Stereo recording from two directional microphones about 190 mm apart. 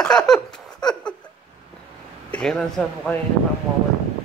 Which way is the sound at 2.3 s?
5° left (ahead or behind).